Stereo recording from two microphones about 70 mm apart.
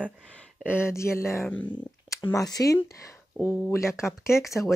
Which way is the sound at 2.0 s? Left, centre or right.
Left.